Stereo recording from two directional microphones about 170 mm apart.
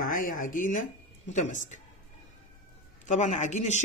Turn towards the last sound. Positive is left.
turn(degrees=45)  # may be behind; listen again after turning